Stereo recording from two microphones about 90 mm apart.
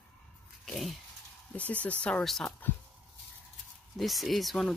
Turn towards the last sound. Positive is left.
turn(degrees=0)  # may be behind; listen again after turning